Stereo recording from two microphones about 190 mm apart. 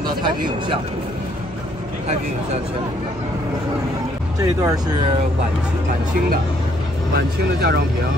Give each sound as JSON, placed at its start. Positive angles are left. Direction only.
{"t": 0.0, "sound": "speech", "side_deg": -25}
{"t": 4.6, "sound": "speech", "side_deg": -20}
{"t": 7.2, "sound": "speech", "side_deg": -55}